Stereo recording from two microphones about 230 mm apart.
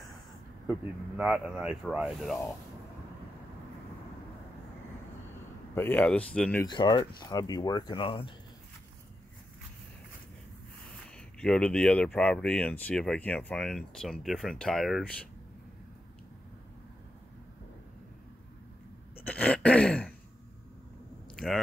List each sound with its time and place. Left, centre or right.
0.7 s speech: centre
5.8 s speech: centre
6.7 s speech: centre
11.1 s speech: centre
19.2 s throat clearing: centre